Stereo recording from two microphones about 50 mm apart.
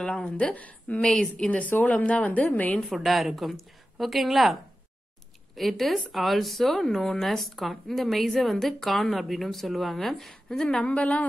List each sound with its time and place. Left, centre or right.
0.0 s a woman's voice: centre
1.0 s a woman's voice: centre
1.5 s a woman's voice: left
2.9 s speech: centre
5.6 s a woman's voice: centre
10.9 s a woman's voice: left